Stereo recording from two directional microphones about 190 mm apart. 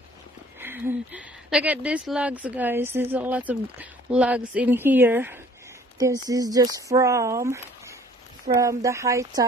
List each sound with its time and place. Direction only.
0.6 s speech: 10° right (ahead or behind)